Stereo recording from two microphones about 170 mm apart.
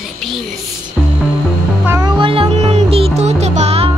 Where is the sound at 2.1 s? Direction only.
30° right (ahead or behind).